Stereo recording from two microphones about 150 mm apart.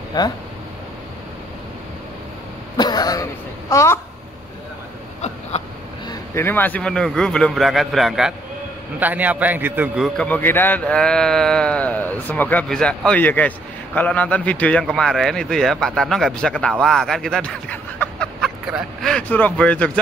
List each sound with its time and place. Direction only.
0.2 s speech: 25° left (ahead or behind)
2.8 s speech: 25° left (ahead or behind)
6.3 s a man's voice: 15° left (ahead or behind); by 10.0 s 10° right (ahead or behind)
10.0 s a man's voice: 5° left (ahead or behind)